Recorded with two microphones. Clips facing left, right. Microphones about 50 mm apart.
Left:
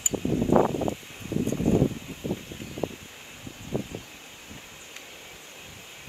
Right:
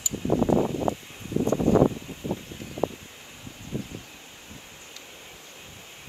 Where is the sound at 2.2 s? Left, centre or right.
Right.